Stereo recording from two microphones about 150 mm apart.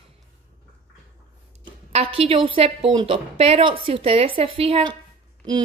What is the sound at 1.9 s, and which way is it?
Speech, 40° right (ahead or behind).